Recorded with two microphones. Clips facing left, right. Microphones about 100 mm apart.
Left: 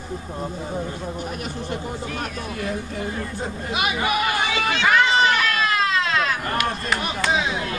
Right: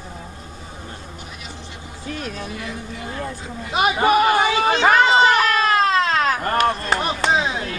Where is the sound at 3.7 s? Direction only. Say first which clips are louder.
Right 7 dB; 40° right (ahead or behind).